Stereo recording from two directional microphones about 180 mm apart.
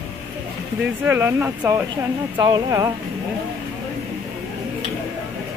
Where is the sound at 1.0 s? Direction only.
10° right (ahead or behind).